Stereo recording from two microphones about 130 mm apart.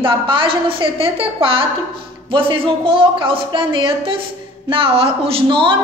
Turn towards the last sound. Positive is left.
turn(degrees=-40)  # may be behind; listen again after turning